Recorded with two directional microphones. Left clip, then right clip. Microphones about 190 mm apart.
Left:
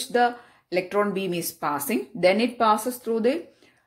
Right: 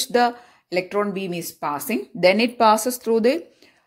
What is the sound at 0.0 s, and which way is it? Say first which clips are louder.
Speech: right 3 dB; 40° right (ahead or behind).